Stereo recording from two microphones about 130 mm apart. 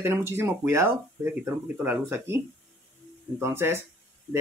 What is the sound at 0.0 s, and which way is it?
Speech, 20° right (ahead or behind).